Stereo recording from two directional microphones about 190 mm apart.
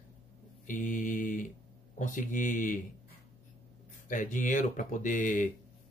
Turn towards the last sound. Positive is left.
turn(degrees=40)  # may be behind; listen again after turning